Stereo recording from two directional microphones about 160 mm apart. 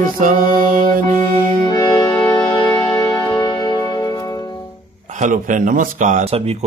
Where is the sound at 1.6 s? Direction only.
25° left (ahead or behind).